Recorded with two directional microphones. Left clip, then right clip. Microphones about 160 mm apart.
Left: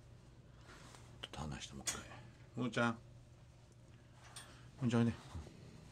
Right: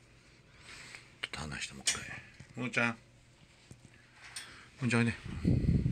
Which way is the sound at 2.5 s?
10° right (ahead or behind).